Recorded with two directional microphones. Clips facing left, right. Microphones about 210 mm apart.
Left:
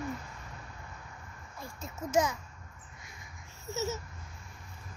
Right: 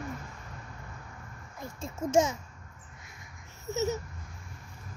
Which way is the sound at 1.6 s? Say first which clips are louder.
Right 5 dB; 25° right (ahead or behind).